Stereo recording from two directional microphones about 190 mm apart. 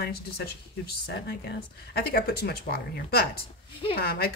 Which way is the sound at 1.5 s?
55° left (ahead or behind).